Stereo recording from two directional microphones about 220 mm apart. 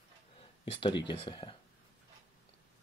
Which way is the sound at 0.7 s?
20° left (ahead or behind).